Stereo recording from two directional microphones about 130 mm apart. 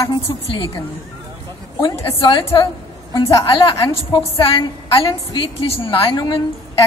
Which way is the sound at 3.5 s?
40° left (ahead or behind).